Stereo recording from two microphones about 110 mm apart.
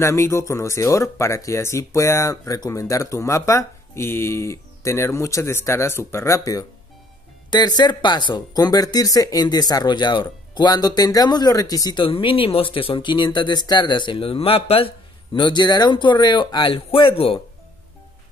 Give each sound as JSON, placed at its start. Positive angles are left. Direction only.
{"t": 0.0, "sound": "speech", "side_deg": 25}
{"t": 7.5, "sound": "speech", "side_deg": 40}
{"t": 12.0, "sound": "speech", "side_deg": 50}
{"t": 15.3, "sound": "speech", "side_deg": 45}